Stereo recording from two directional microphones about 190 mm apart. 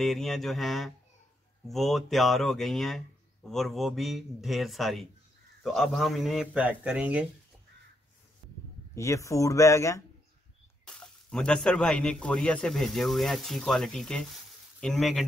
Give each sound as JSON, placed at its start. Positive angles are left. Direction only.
{"t": 0.0, "sound": "speech", "side_deg": 0}
{"t": 8.9, "sound": "speech", "side_deg": 15}
{"t": 10.9, "sound": "speech", "side_deg": 5}